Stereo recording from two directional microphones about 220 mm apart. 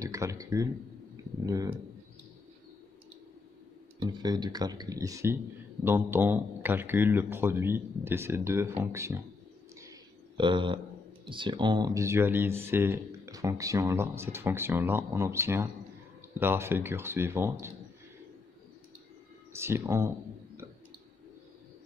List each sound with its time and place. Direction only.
0.0 s speech: 15° right (ahead or behind)
4.0 s speech: 20° right (ahead or behind)
9.8 s a sound: 20° right (ahead or behind)
11.2 s speech: 20° right (ahead or behind)
19.5 s speech: 10° right (ahead or behind)